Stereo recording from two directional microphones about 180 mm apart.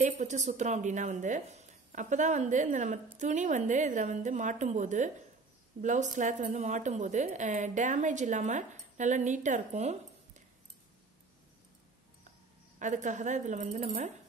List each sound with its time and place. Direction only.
0.0 s a woman's voice: 40° right (ahead or behind)
12.7 s a woman's voice: 45° right (ahead or behind)